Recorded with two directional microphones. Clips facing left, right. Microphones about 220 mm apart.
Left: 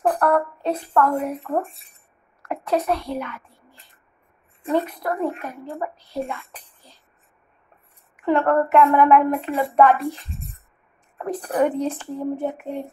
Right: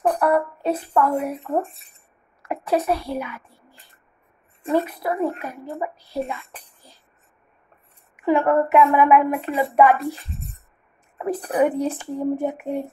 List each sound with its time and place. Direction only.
0.1 s a woman's voice: 5° right (ahead or behind)
4.6 s a woman's voice: 10° right (ahead or behind)
8.3 s a woman's voice: 10° right (ahead or behind)
11.1 s a woman's voice: 5° right (ahead or behind)